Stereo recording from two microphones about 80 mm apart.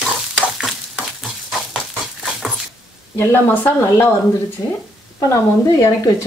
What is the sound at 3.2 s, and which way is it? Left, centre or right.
Speech, left.